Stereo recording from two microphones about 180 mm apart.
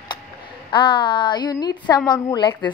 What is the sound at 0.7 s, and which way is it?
A child's voice, 25° left (ahead or behind).